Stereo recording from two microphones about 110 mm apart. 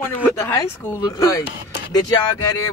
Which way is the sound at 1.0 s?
35° left (ahead or behind).